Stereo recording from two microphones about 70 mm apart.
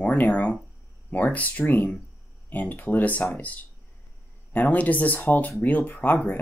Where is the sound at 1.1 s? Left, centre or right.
Left.